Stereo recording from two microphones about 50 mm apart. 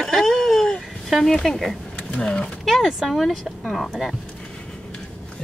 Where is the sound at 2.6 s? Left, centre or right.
Centre.